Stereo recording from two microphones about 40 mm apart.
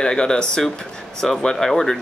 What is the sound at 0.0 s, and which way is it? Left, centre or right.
Speech, centre.